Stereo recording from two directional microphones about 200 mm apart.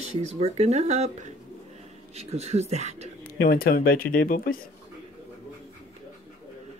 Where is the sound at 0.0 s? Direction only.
35° right (ahead or behind).